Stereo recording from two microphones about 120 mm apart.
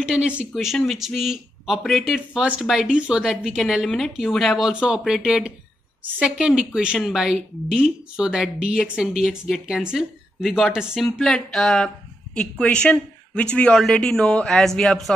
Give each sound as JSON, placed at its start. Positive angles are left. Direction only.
{"t": 0.0, "sound": "a woman's voice", "side_deg": -5}